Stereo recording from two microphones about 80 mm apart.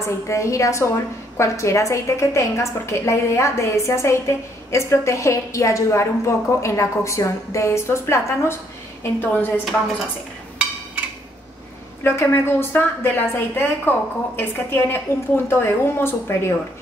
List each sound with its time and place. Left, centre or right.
0.3 s a woman's voice: left
9.0 s a woman's voice: left
12.0 s a woman's voice: left